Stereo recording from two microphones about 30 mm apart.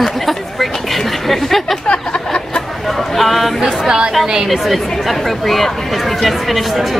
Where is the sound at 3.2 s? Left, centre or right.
Centre.